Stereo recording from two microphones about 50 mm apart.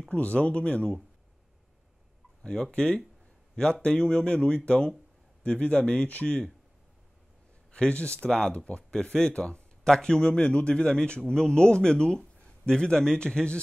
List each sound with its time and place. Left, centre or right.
0.1 s speech: left
2.4 s speech: centre
7.7 s speech: left